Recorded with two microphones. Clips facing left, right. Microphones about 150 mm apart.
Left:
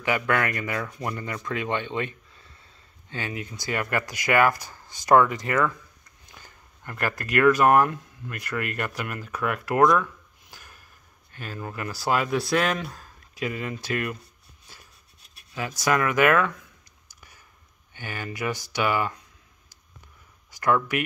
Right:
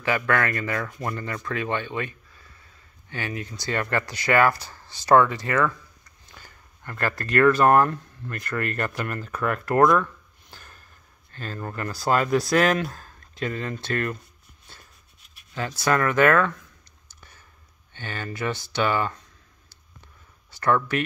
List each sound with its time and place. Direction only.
0.0 s speech: 15° left (ahead or behind)
10.5 s a sound: 10° left (ahead or behind)
11.3 s speech: 10° left (ahead or behind)
15.8 s speech: 10° left (ahead or behind)
17.9 s speech: 10° left (ahead or behind)
20.6 s speech: 15° left (ahead or behind)